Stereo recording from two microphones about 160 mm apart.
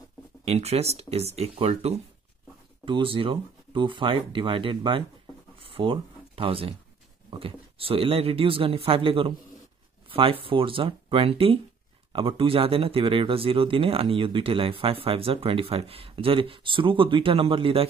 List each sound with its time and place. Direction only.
0.5 s speech: 40° right (ahead or behind)
5.6 s a sound: 35° right (ahead or behind)
7.2 s speech: 35° right (ahead or behind)